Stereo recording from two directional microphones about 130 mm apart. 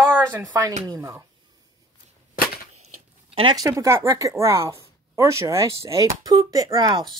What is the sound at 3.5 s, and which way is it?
Speech, 25° right (ahead or behind).